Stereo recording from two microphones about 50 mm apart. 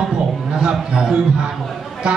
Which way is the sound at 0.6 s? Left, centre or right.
Centre.